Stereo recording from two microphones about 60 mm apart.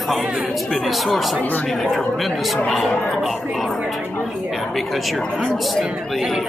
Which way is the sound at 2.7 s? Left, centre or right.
Centre.